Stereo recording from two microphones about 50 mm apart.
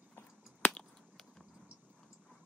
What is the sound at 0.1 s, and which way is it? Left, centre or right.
Finger snapping, left.